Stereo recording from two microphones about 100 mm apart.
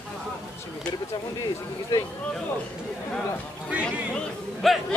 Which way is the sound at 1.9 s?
30° left (ahead or behind).